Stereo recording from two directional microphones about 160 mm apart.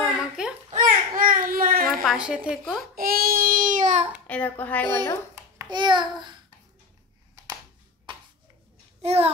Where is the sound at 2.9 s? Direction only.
65° right (ahead or behind).